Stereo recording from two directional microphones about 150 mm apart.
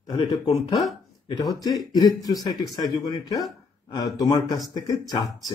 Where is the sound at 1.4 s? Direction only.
25° left (ahead or behind).